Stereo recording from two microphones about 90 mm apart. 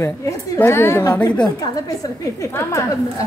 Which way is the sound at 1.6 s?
45° left (ahead or behind).